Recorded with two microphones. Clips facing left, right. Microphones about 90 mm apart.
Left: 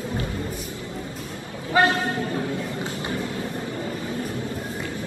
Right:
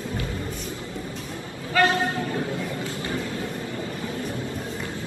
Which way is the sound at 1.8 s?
20° left (ahead or behind).